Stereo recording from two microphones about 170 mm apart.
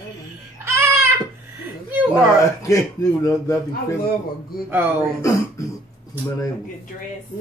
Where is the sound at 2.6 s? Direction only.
20° left (ahead or behind).